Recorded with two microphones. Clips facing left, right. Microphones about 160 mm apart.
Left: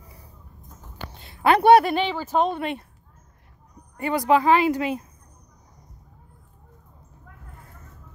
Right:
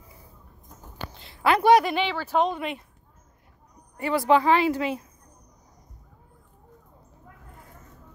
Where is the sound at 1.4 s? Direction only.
55° left (ahead or behind).